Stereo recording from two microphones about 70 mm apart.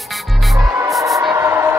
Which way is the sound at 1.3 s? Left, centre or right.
Right.